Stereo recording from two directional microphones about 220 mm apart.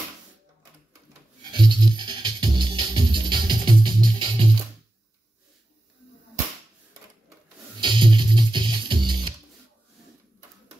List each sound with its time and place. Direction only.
1.4 s music: 20° right (ahead or behind)
7.8 s music: 20° right (ahead or behind)